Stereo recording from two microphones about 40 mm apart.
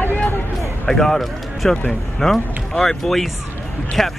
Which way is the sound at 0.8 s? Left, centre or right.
Centre.